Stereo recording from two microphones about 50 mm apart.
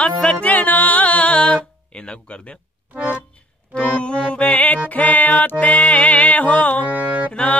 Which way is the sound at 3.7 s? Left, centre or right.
Left.